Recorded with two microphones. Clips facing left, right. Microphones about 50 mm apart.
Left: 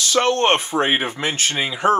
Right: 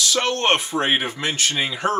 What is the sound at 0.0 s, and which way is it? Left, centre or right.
Speech, left.